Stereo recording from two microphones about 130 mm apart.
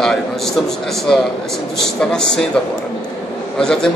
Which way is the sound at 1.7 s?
5° left (ahead or behind).